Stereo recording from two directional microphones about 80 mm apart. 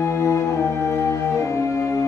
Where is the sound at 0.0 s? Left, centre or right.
Left.